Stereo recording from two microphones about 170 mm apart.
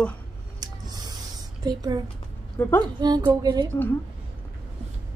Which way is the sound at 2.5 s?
15° left (ahead or behind).